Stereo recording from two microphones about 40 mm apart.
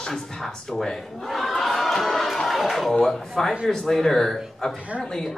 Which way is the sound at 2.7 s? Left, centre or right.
Centre.